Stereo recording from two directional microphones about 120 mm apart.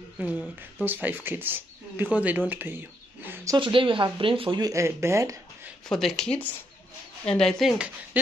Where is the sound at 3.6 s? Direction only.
45° right (ahead or behind).